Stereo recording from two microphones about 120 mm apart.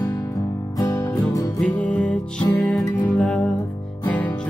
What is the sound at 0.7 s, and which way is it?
Music, 30° left (ahead or behind).